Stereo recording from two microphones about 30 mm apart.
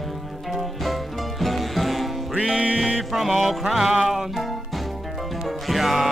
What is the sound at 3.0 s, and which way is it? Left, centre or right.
Music, centre.